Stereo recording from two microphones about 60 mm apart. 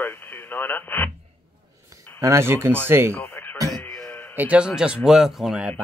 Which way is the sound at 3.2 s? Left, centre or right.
Left.